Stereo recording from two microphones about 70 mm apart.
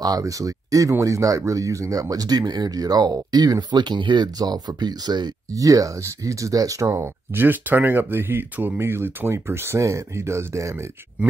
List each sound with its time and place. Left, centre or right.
0.0 s speech: right
5.5 s speech: right
6.9 s speech: right